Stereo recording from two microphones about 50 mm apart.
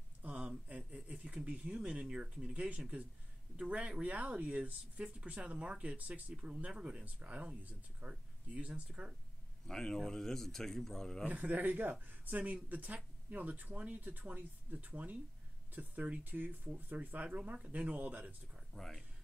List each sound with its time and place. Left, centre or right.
0.3 s a sound: right
1.0 s speech: right
9.7 s speech: centre
11.2 s speech: right
18.7 s speech: centre